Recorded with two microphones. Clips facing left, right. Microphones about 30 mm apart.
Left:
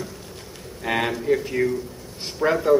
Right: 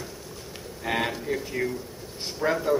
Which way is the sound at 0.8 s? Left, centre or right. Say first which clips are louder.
Left 5 dB; centre.